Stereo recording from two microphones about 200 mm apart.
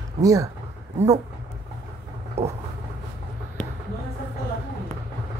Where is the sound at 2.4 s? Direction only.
30° right (ahead or behind).